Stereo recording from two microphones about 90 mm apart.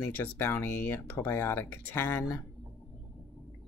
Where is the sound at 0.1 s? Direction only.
20° left (ahead or behind).